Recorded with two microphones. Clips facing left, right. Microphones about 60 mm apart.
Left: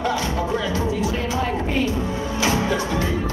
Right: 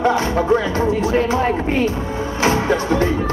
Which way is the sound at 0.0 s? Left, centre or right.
Right.